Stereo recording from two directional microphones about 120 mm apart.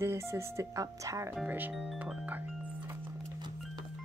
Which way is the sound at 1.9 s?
10° right (ahead or behind).